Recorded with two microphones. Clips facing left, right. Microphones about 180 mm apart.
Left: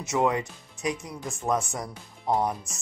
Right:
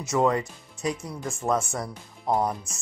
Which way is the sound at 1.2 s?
Centre (ahead or behind).